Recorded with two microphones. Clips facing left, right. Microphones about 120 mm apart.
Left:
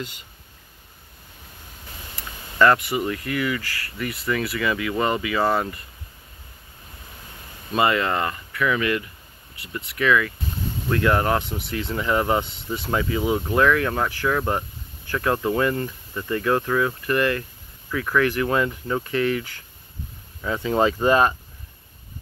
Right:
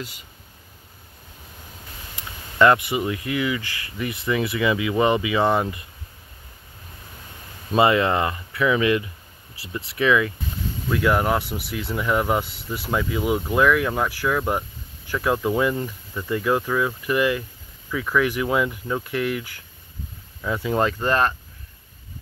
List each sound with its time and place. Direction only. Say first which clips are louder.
2.1 s speech: right 1 dB; 20° right (ahead or behind)
7.7 s speech: right 3 dB; 25° right (ahead or behind)
10.9 s speech: even; 5° right (ahead or behind)